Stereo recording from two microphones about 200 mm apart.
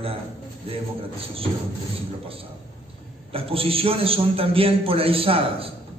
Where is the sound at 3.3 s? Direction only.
30° right (ahead or behind).